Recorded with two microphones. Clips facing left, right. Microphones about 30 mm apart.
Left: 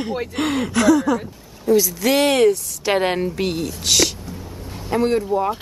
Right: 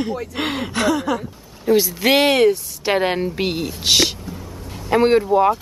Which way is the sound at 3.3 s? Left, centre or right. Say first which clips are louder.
Even; right.